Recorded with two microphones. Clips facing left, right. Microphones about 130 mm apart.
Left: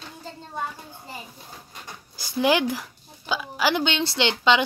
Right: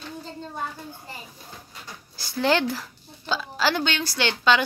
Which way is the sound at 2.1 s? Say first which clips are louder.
Left 1 dB; 15° left (ahead or behind).